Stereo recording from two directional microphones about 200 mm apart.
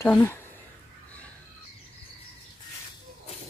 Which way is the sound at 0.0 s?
10° left (ahead or behind).